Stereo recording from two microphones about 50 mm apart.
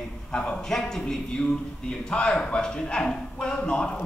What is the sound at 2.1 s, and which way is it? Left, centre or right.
Speech, left.